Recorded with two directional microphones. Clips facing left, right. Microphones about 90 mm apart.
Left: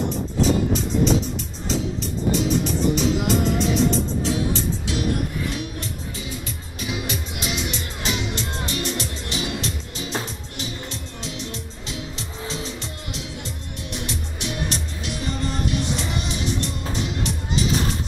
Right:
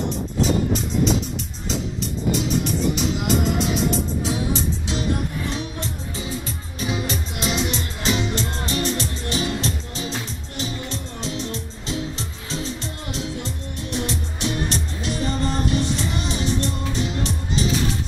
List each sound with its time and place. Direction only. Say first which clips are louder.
1.7 s music: left 1 dB; centre (ahead or behind)
4.2 s music: even; 15° right (ahead or behind); by 17.7 s 35° right (ahead or behind)